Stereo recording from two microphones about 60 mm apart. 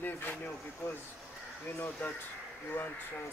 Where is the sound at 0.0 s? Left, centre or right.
Left.